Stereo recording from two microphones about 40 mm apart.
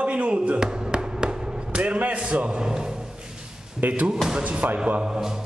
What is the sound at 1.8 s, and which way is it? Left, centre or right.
A man's voice, right.